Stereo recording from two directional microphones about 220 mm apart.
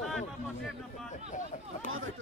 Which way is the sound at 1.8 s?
65° right (ahead or behind).